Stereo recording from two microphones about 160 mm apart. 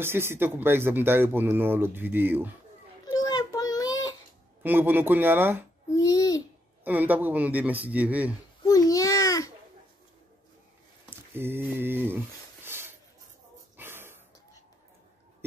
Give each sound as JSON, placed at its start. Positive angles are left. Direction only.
{"t": 0.0, "sound": "speech", "side_deg": -15}
{"t": 3.1, "sound": "child singing", "side_deg": 25}
{"t": 4.6, "sound": "speech", "side_deg": -10}
{"t": 5.9, "sound": "a sound", "side_deg": 20}
{"t": 6.8, "sound": "speech", "side_deg": -10}
{"t": 8.6, "sound": "babbling", "side_deg": 20}
{"t": 11.1, "sound": "a sound", "side_deg": -15}